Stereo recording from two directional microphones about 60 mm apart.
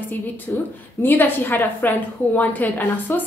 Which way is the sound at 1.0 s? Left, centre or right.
Left.